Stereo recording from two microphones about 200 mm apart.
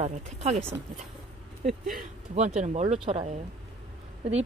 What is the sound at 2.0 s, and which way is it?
Speech, 35° right (ahead or behind).